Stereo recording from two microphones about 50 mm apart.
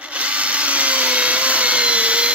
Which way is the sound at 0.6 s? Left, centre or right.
Right.